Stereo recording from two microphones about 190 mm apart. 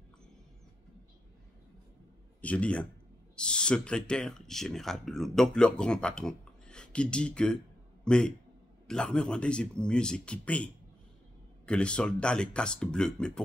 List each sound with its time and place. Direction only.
2.4 s a man's voice: 5° left (ahead or behind)